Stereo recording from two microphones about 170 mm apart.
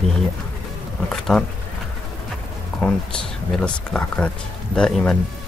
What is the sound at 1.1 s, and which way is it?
Speech, 5° left (ahead or behind).